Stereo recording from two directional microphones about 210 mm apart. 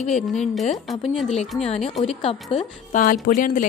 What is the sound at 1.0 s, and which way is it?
Speech, centre (ahead or behind).